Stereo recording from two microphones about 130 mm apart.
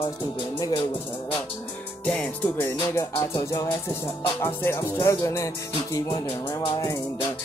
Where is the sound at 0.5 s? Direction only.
35° left (ahead or behind).